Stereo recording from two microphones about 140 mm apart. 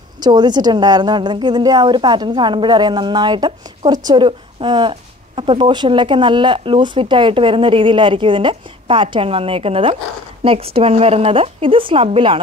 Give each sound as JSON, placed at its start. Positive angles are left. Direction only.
{"t": 0.2, "sound": "a woman's voice", "side_deg": -30}